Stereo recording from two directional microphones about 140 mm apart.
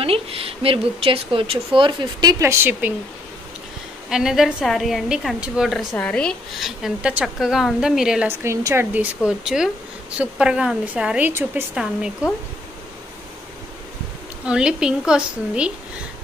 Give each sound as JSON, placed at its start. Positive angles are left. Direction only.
{"t": 0.0, "sound": "a woman's voice", "side_deg": -45}
{"t": 4.1, "sound": "a woman's voice", "side_deg": -5}
{"t": 8.3, "sound": "a woman's voice", "side_deg": -20}
{"t": 14.4, "sound": "a woman's voice", "side_deg": -5}